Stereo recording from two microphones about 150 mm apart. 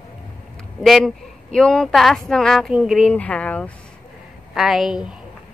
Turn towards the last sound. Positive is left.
turn(degrees=-5)  # may be behind; listen again after turning